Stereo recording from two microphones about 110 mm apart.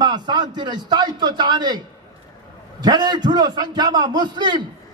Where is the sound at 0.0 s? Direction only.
40° right (ahead or behind).